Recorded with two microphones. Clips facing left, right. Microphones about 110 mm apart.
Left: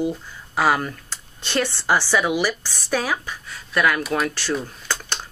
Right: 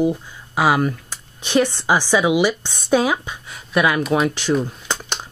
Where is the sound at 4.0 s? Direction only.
5° right (ahead or behind).